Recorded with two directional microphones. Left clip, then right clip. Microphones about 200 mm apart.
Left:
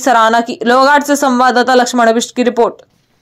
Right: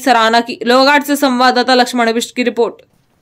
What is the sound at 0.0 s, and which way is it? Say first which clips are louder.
Speech: left 1 dB; 10° left (ahead or behind).